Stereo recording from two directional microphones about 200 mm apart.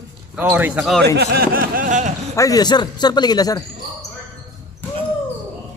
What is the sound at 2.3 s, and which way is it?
Speech, 20° left (ahead or behind).